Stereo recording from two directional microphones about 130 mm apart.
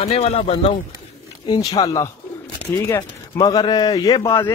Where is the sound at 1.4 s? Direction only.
30° left (ahead or behind).